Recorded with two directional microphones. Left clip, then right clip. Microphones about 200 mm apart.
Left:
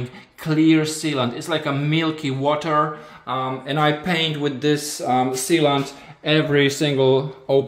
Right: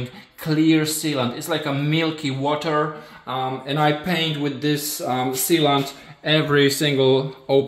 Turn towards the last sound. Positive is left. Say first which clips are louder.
# even
turn(degrees=5)  # may be behind; listen again after turning